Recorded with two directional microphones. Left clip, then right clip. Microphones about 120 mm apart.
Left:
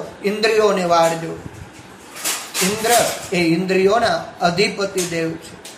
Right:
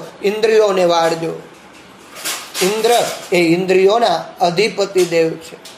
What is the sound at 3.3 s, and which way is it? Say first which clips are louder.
A man's voice: right 8 dB; 40° right (ahead or behind).